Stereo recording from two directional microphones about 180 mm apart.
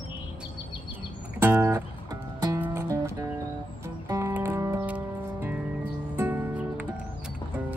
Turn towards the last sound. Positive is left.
turn(degrees=-5)  # may be behind; listen again after turning